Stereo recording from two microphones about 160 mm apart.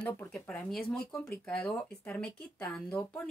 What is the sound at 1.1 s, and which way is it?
Speech, 20° left (ahead or behind).